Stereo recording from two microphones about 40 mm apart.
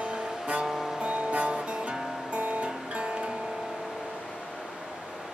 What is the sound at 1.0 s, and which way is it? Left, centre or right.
Music, right.